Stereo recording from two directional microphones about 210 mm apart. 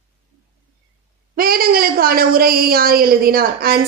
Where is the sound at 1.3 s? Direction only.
45° right (ahead or behind).